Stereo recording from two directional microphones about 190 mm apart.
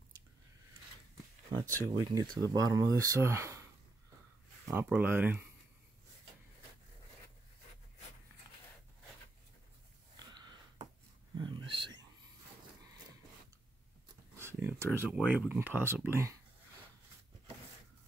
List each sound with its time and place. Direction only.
1.9 s speech: 20° right (ahead or behind)
2.2 s speech: 5° left (ahead or behind)
2.5 s speech: 20° right (ahead or behind)
4.7 s speech: 10° right (ahead or behind)
11.3 s a sound: 25° right (ahead or behind)
14.3 s speech: 15° right (ahead or behind)